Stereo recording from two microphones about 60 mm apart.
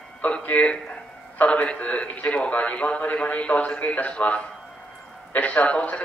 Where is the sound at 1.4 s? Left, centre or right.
Left.